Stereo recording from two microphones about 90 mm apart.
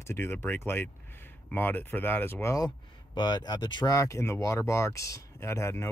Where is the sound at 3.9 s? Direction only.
35° left (ahead or behind).